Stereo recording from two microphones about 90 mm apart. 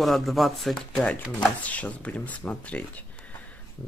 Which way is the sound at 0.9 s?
15° left (ahead or behind).